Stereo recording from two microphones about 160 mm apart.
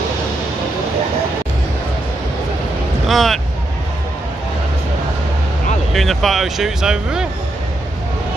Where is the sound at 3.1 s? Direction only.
Centre (ahead or behind).